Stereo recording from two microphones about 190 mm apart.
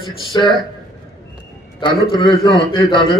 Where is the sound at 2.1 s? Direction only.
25° left (ahead or behind).